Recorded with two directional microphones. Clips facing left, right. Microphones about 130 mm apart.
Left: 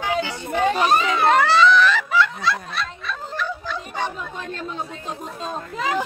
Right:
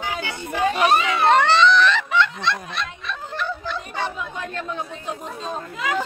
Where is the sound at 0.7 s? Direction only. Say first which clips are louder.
Even; 35° left (ahead or behind).